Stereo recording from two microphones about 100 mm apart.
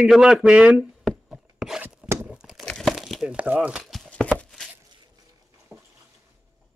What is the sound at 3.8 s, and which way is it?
Chopping, centre (ahead or behind).